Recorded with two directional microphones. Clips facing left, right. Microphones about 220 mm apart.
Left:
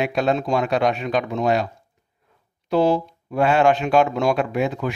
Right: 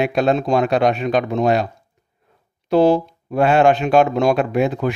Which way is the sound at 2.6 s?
60° right (ahead or behind).